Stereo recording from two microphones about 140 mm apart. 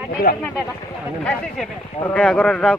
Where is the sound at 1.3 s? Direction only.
10° left (ahead or behind).